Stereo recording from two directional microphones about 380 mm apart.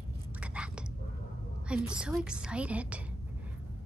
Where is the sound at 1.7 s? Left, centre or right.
Centre.